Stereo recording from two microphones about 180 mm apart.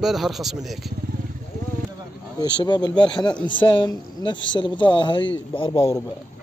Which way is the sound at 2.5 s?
25° left (ahead or behind).